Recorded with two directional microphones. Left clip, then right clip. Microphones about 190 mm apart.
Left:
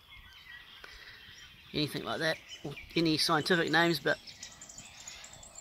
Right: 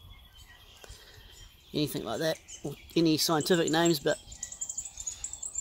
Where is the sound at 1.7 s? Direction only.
30° right (ahead or behind).